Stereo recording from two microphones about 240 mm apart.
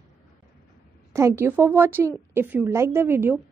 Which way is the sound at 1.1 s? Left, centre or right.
Centre.